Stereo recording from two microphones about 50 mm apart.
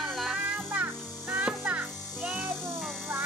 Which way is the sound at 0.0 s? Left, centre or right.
Centre.